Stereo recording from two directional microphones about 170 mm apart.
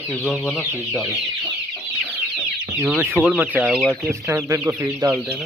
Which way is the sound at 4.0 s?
15° right (ahead or behind).